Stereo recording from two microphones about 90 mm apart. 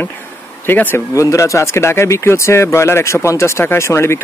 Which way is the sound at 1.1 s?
35° left (ahead or behind).